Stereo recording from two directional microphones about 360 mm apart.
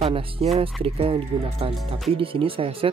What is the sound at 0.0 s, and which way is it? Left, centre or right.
Speech, centre.